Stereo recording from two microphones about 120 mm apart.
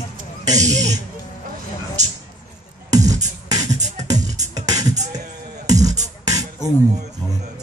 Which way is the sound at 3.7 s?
75° right (ahead or behind).